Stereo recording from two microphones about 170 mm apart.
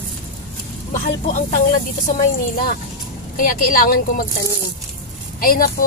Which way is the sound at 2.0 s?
60° left (ahead or behind).